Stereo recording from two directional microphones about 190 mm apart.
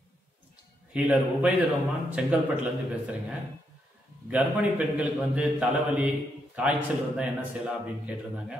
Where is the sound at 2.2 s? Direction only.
5° right (ahead or behind).